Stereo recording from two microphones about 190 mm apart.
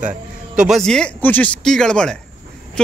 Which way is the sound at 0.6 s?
Centre (ahead or behind).